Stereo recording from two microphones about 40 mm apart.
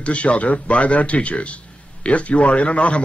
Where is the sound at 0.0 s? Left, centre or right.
Left.